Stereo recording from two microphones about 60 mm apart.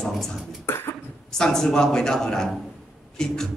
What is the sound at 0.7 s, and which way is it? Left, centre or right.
Cough, left.